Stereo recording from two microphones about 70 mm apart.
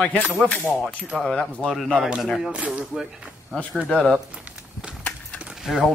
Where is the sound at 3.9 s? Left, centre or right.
Centre.